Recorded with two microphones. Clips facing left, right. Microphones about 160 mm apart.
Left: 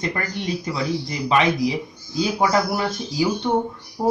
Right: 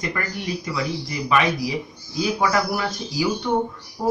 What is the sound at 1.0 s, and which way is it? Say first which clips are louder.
Speech: left 1 dB; 25° left (ahead or behind).